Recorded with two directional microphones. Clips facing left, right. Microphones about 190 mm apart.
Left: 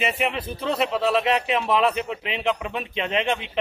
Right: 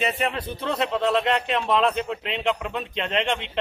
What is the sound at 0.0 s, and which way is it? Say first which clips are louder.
Speech: even; centre (ahead or behind).